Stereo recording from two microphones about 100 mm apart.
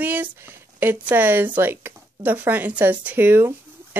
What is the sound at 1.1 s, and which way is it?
Speech, 20° right (ahead or behind).